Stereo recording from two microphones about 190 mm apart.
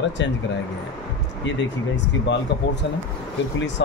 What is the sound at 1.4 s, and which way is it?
Speech, 70° left (ahead or behind).